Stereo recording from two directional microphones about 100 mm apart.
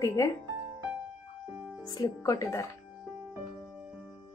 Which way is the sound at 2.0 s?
35° left (ahead or behind).